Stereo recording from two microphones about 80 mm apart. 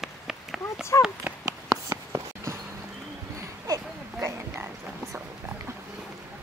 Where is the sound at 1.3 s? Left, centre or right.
Centre.